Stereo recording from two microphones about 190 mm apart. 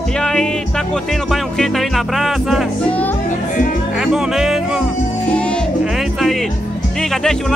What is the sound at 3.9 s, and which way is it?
Music, 5° right (ahead or behind).